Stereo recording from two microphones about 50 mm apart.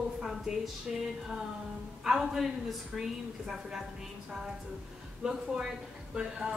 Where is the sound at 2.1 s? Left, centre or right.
Centre.